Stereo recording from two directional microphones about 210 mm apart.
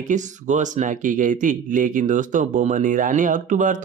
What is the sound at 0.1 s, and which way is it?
Speech, 35° right (ahead or behind).